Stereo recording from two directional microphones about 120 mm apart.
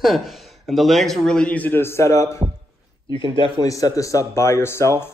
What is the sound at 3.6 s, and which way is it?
Speech, 30° left (ahead or behind).